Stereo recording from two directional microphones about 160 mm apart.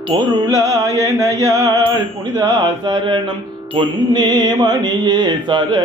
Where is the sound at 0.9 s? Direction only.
20° left (ahead or behind).